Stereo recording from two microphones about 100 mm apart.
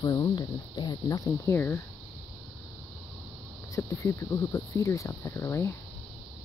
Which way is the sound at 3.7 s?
30° left (ahead or behind).